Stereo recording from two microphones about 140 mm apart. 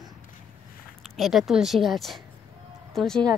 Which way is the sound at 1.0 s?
Centre (ahead or behind).